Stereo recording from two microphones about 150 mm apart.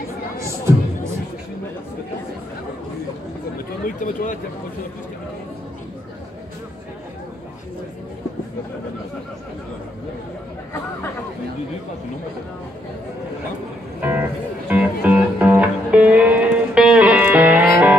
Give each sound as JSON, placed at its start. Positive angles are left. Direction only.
{"t": 3.8, "sound": "speech", "side_deg": 60}
{"t": 14.0, "sound": "music", "side_deg": -10}